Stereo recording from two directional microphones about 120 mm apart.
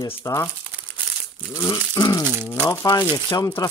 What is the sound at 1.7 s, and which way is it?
Speech, 35° left (ahead or behind).